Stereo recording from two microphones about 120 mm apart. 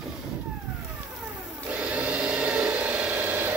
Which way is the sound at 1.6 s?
10° right (ahead or behind).